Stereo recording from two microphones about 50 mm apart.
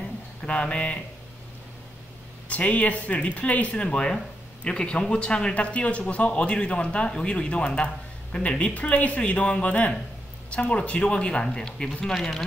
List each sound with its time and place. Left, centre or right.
0.5 s speech: left
2.4 s speech: left
3.8 s speech: centre